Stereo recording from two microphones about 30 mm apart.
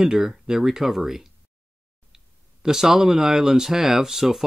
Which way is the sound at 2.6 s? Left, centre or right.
Centre.